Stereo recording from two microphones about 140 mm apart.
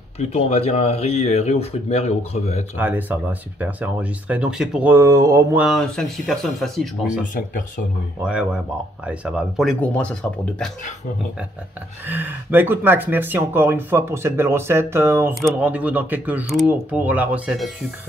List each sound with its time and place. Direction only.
0.2 s speech: 50° left (ahead or behind)
2.8 s speech: 10° right (ahead or behind)
5.8 s speech: 5° left (ahead or behind)
7.3 s speech: 75° left (ahead or behind)
8.2 s speech: 10° right (ahead or behind)
9.7 s speech: 10° left (ahead or behind)
12.1 s speech: 15° right (ahead or behind)